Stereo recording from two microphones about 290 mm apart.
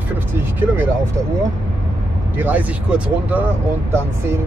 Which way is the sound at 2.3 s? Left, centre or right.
Centre.